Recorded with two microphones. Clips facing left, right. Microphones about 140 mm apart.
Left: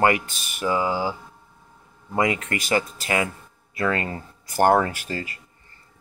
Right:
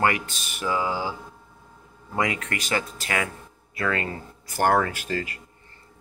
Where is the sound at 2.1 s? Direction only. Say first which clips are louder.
Left 3 dB; 25° left (ahead or behind).